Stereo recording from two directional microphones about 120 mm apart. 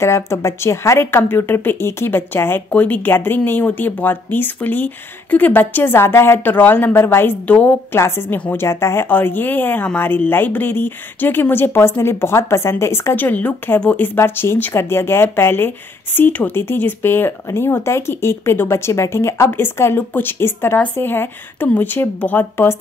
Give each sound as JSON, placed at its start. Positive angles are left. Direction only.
{"t": 0.0, "sound": "speech", "side_deg": 25}